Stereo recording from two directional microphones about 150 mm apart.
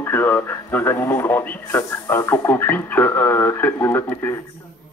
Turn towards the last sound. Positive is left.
turn(degrees=15)  # may be behind; listen again after turning